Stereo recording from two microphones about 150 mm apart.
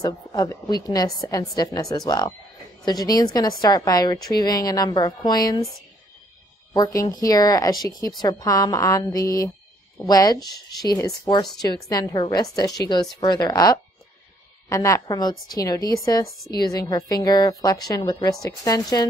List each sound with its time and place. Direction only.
0.0 s a woman's voice: 25° left (ahead or behind)
6.7 s a woman's voice: 25° left (ahead or behind)